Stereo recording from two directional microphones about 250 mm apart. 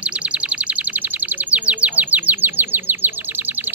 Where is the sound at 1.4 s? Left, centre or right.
Centre.